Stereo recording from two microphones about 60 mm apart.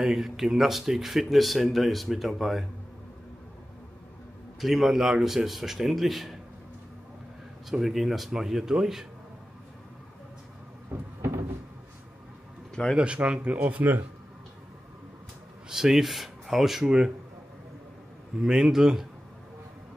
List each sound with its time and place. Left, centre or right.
0.0 s speech: centre
4.6 s speech: centre
7.7 s speech: centre
10.9 s cupboard open or close: right
12.9 s speech: centre
15.7 s speech: centre
18.4 s speech: centre